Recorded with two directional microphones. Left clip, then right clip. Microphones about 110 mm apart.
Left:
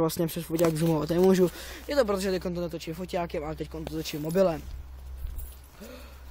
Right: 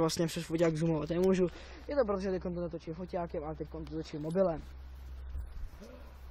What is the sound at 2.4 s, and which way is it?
Speech, 50° left (ahead or behind).